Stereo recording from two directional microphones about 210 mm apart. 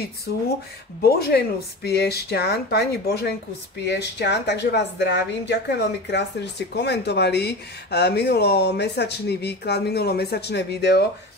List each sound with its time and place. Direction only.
0.3 s a woman's voice: 45° left (ahead or behind)